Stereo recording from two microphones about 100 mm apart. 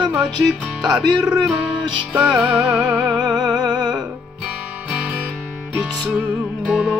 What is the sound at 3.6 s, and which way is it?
Music, 45° right (ahead or behind).